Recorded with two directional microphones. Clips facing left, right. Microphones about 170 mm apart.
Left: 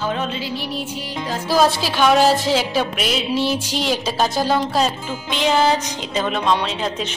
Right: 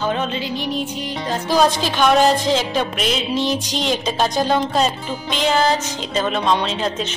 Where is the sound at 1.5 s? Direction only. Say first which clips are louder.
Even; 5° left (ahead or behind).